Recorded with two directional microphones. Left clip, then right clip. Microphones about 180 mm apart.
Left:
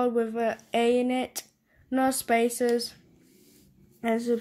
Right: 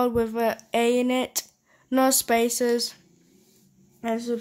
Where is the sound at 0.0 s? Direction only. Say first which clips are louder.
Right 3 dB; 15° right (ahead or behind).